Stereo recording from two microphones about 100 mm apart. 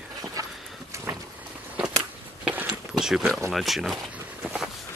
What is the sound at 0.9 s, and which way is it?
Vehicle, 30° right (ahead or behind).